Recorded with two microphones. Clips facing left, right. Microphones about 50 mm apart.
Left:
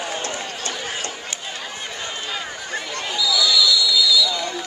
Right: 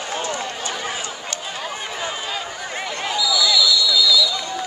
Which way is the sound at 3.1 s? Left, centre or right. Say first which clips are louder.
Right 1 dB; centre.